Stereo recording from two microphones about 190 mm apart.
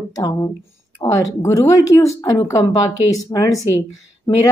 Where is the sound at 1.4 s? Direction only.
15° left (ahead or behind).